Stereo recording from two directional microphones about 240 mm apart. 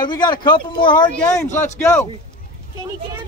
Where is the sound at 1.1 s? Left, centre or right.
Centre.